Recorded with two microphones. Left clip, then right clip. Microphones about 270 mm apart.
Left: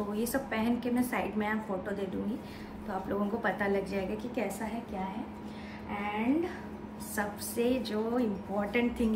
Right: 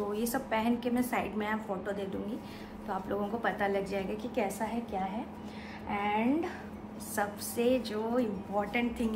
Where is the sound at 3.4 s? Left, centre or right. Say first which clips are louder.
Even; centre.